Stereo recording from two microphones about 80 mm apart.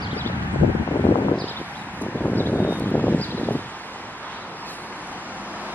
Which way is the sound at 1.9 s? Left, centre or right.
Left.